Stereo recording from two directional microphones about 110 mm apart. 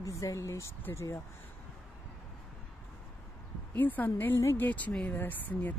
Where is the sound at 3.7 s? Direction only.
15° left (ahead or behind).